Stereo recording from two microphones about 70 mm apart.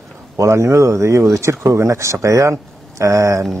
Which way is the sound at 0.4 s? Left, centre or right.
Right.